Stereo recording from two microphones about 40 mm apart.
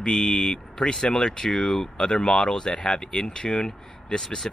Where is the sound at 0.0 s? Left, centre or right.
Centre.